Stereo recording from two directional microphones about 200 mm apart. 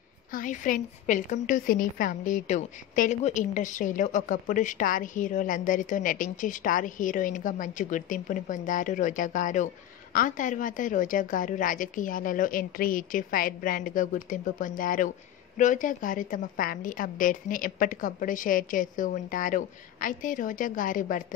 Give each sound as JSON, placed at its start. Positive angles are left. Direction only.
{"t": 0.3, "sound": "a woman's voice", "side_deg": 40}